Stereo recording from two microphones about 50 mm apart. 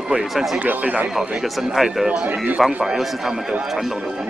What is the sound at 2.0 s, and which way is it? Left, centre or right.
Speech, right.